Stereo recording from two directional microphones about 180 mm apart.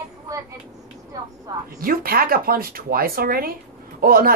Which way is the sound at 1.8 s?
55° right (ahead or behind).